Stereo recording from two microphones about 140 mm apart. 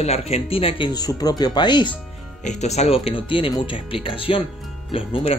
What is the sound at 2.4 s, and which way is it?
Speech, 50° left (ahead or behind).